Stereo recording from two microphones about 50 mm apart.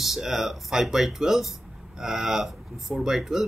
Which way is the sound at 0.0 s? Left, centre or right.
Centre.